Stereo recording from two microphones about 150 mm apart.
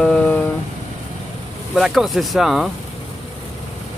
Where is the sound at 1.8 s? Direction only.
Centre (ahead or behind).